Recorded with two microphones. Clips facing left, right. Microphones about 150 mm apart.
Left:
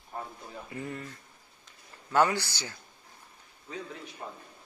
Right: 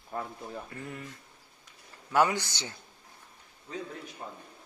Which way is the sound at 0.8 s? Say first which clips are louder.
Left 3 dB; 5° right (ahead or behind).